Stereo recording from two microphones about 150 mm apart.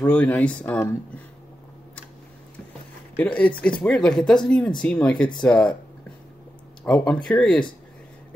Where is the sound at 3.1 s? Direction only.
10° left (ahead or behind).